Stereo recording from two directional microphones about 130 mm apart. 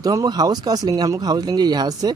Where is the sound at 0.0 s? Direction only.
30° right (ahead or behind).